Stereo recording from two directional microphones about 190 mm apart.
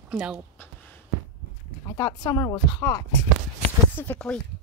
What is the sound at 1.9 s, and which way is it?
Speech, 15° left (ahead or behind).